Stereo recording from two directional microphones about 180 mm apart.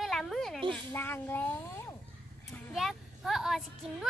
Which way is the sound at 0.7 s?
10° left (ahead or behind).